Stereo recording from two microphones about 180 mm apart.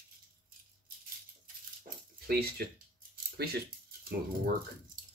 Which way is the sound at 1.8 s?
55° right (ahead or behind).